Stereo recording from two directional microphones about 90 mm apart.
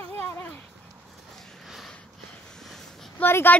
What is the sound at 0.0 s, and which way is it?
Dog, 20° left (ahead or behind).